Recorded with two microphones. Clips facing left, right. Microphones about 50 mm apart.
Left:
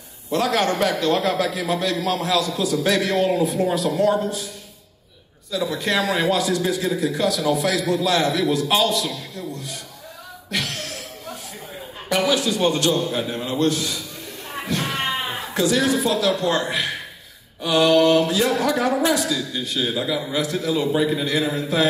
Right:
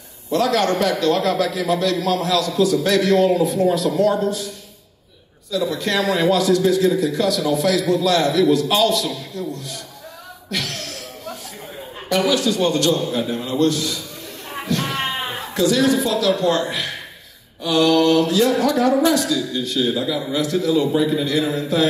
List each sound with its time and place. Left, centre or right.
0.3 s a man's voice: centre
5.5 s a man's voice: centre
9.5 s a sound: centre
12.1 s a man's voice: centre
14.8 s a sound: centre
15.5 s a woman's voice: centre